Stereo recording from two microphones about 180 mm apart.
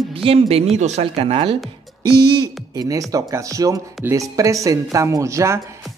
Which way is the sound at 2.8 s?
20° right (ahead or behind).